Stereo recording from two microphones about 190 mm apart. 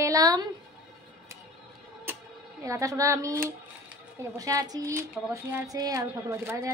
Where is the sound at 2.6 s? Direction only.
15° right (ahead or behind).